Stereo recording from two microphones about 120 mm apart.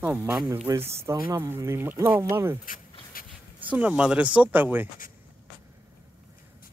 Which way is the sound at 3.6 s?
10° right (ahead or behind).